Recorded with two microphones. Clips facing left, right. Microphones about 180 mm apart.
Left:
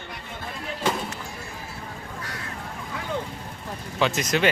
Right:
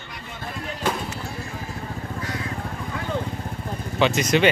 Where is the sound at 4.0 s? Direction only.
Centre (ahead or behind).